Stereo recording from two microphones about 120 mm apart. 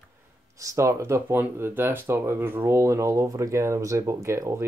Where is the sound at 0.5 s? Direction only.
25° right (ahead or behind).